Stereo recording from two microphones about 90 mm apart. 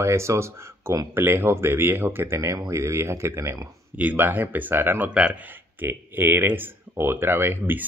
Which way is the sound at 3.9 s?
20° right (ahead or behind).